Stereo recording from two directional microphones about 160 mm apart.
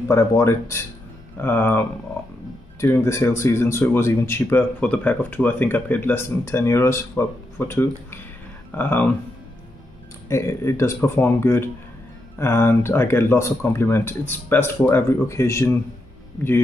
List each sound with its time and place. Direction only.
0.1 s speech: 15° left (ahead or behind)
10.2 s speech: 15° left (ahead or behind)